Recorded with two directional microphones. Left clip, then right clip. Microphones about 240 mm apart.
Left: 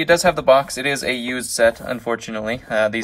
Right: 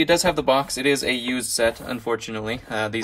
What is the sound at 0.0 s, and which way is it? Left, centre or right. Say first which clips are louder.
Speech: left 4 dB; right.